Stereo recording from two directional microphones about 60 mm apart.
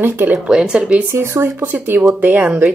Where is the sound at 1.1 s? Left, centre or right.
Right.